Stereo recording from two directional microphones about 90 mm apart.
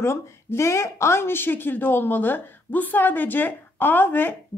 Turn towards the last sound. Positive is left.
turn(degrees=20)  # may be behind; listen again after turning